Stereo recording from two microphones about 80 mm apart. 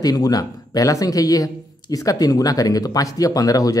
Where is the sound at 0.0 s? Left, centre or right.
Left.